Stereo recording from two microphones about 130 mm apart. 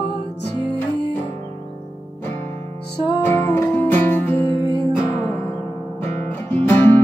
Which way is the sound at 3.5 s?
15° left (ahead or behind).